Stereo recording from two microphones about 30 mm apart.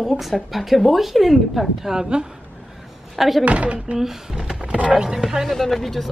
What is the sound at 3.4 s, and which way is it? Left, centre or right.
Speech, right.